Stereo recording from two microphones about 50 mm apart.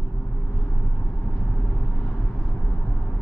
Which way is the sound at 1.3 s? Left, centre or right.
Left.